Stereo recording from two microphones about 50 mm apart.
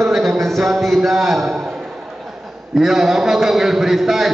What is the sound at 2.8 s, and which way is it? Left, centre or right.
A man's voice, centre.